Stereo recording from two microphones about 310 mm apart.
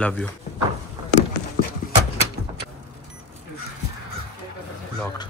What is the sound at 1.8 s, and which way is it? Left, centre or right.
Dog, left.